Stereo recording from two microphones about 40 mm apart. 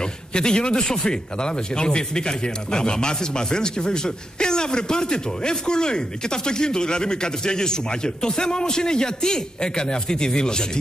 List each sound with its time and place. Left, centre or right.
0.3 s speech: left